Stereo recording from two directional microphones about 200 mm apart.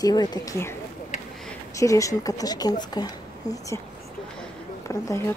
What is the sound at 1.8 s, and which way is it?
Speech, 15° left (ahead or behind).